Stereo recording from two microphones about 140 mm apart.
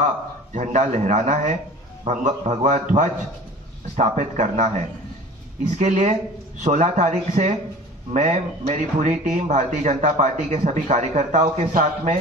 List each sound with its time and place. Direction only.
0.0 s speech: 60° right (ahead or behind)
5.8 s speech: 65° right (ahead or behind)